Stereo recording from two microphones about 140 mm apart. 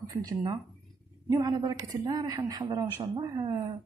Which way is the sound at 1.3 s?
25° right (ahead or behind).